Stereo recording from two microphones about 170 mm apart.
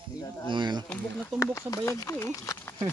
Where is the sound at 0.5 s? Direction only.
25° right (ahead or behind).